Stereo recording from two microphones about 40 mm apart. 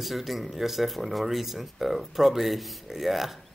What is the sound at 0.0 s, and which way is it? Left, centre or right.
Speech, centre.